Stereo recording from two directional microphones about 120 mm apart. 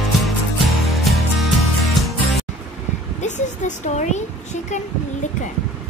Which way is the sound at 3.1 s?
85° left.